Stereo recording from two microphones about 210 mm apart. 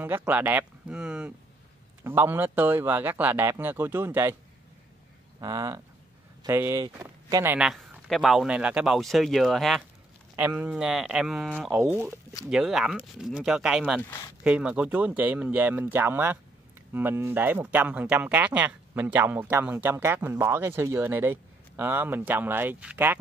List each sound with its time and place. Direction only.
0.0 s speech: 10° right (ahead or behind)
5.4 s speech: 20° right (ahead or behind)
7.5 s speech: centre (ahead or behind)